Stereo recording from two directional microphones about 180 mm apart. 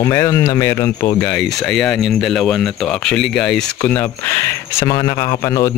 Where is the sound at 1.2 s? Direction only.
5° left (ahead or behind).